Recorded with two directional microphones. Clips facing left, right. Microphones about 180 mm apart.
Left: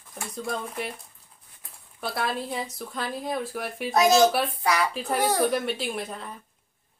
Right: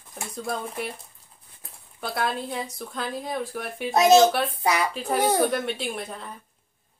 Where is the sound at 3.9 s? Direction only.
25° right (ahead or behind).